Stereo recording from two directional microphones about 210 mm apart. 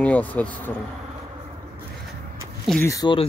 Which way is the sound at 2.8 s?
15° left (ahead or behind).